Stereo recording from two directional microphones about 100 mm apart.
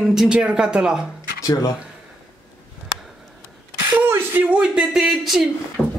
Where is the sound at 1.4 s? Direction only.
40° left (ahead or behind).